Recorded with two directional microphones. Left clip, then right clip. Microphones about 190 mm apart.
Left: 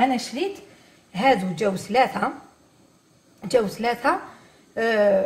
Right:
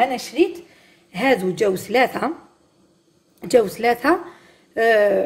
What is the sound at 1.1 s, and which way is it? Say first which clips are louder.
A woman's voice: right 1 dB; 40° right (ahead or behind).